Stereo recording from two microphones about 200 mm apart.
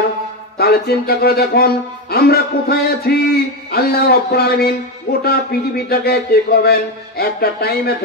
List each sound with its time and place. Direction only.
0.6 s speech: 50° left (ahead or behind)